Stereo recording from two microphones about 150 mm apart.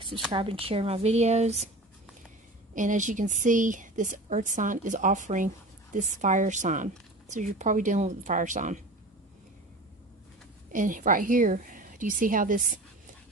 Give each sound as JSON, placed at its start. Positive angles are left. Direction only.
{"t": 0.3, "sound": "speech", "side_deg": -40}
{"t": 2.7, "sound": "a woman's voice", "side_deg": -55}
{"t": 10.7, "sound": "a woman's voice", "side_deg": -60}